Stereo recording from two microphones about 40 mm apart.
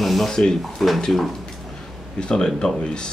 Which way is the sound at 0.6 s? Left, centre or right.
Centre.